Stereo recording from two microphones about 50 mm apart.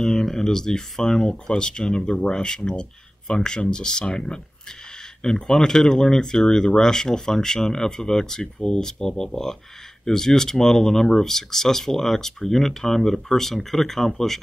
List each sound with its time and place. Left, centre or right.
0.0 s speech: centre